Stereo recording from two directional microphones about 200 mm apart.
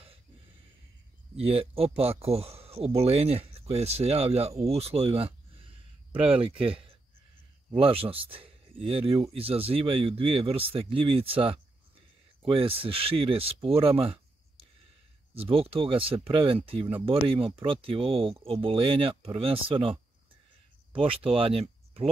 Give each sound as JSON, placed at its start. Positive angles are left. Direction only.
{"t": 1.3, "sound": "speech", "side_deg": -30}